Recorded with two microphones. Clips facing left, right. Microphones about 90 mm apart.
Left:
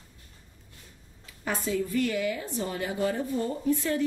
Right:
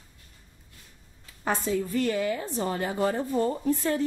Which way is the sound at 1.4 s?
35° right (ahead or behind).